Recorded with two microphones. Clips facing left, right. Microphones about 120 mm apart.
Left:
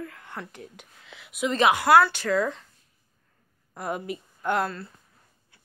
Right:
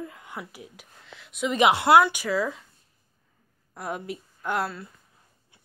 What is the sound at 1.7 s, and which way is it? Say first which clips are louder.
Speech: even; 25° right (ahead or behind).